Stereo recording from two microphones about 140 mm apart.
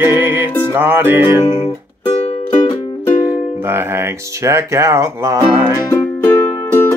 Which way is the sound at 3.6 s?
15° right (ahead or behind).